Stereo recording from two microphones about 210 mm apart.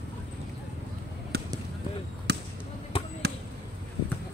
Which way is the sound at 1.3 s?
50° right (ahead or behind).